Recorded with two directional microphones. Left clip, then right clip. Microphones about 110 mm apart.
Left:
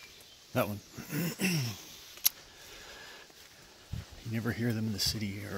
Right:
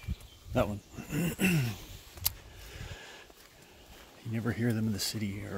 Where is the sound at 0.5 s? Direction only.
30° right (ahead or behind).